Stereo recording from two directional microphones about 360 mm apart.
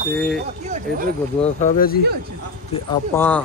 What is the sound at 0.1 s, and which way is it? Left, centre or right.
Speech, centre.